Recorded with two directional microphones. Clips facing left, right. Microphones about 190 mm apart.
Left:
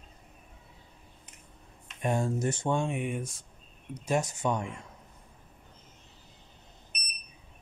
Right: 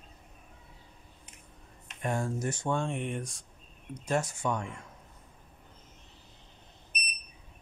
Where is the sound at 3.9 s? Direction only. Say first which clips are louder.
Left 1 dB; 15° left (ahead or behind).